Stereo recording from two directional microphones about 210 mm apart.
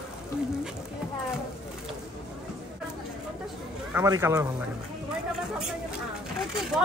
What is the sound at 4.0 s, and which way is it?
Speech, 15° right (ahead or behind).